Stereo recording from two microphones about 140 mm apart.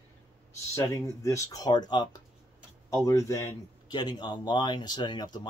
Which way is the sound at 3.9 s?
30° left (ahead or behind).